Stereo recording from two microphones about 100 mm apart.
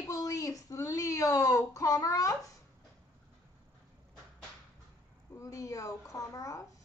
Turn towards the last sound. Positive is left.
turn(degrees=35)  # may be behind; listen again after turning